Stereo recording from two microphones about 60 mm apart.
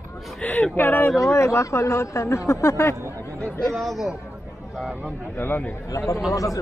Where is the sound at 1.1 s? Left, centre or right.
Left.